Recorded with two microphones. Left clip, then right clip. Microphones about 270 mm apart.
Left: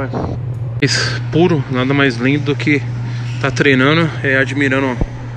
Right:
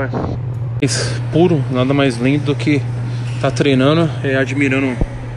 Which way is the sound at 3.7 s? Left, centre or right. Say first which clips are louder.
Even; right.